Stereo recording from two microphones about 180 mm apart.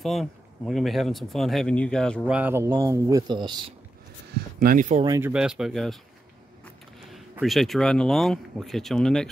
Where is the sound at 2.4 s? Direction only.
15° right (ahead or behind).